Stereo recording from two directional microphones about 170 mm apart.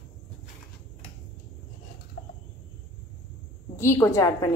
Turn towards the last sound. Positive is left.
turn(degrees=20)  # may be behind; listen again after turning